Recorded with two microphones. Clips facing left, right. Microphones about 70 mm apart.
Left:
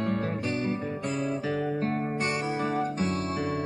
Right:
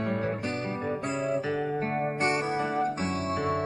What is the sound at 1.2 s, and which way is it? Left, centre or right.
Music, centre.